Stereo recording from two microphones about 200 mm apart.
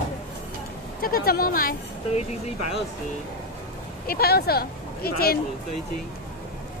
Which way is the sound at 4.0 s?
50° left (ahead or behind).